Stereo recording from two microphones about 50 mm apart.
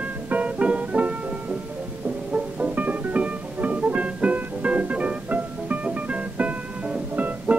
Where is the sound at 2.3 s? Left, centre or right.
Right.